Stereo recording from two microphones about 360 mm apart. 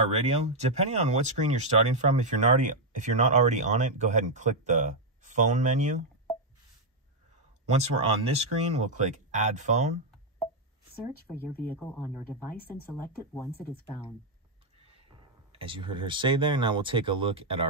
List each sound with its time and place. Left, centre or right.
0.0 s speech: centre
7.7 s speech: centre
11.6 s speech: centre
15.5 s speech: centre